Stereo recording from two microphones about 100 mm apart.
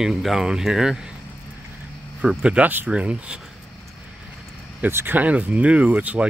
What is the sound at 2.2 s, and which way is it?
Speech, 10° right (ahead or behind).